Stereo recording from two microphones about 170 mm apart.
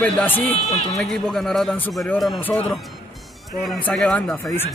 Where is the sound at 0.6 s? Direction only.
45° left (ahead or behind).